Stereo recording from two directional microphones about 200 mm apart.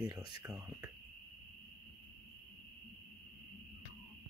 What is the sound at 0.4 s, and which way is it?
Speech, 10° right (ahead or behind).